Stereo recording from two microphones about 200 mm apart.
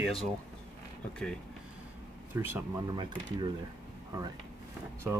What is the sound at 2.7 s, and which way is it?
Speech, 25° right (ahead or behind).